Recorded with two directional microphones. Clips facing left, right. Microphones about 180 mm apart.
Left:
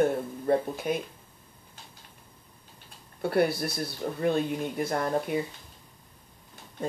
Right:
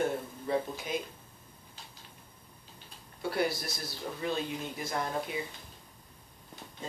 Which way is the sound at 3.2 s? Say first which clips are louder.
Left 6 dB; 60° left (ahead or behind).